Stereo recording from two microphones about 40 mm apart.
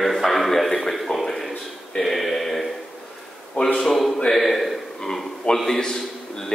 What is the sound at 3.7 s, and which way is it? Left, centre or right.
A man's voice, centre.